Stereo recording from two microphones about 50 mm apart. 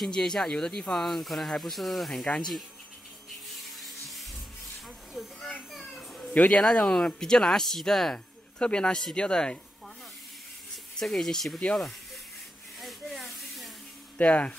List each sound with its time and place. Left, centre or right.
0.1 s speech: centre
3.6 s music: centre
6.3 s speech: left; by 8.2 s centre
8.5 s speech: centre
11.0 s speech: centre
12.8 s a sound: centre
14.1 s speech: left